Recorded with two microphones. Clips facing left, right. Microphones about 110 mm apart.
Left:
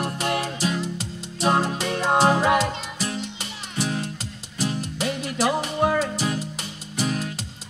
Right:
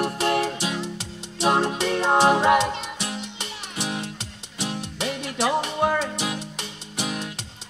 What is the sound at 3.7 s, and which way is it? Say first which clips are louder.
Music: left 3 dB; 25° right (ahead or behind).